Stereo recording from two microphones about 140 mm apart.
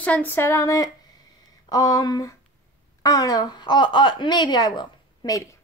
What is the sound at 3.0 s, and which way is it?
A woman's voice, 25° left (ahead or behind).